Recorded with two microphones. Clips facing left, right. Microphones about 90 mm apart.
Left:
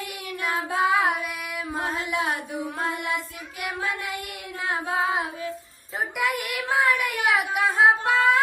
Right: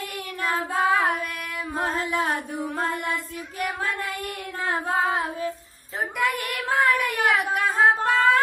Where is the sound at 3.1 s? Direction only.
Centre (ahead or behind).